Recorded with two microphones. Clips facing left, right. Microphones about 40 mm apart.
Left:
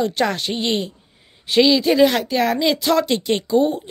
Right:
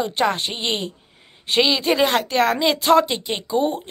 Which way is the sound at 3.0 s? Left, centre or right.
Centre.